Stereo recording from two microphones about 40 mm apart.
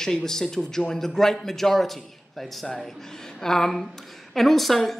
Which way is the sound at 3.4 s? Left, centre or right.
Centre.